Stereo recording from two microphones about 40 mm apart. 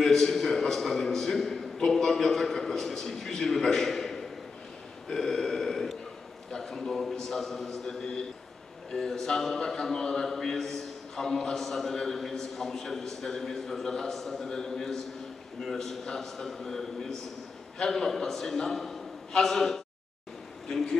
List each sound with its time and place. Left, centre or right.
0.0 s a man's voice: centre
5.0 s burping: centre
6.5 s a man's voice: centre